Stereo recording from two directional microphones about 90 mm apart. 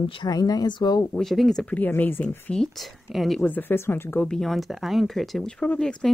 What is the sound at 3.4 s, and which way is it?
Speech, 20° left (ahead or behind).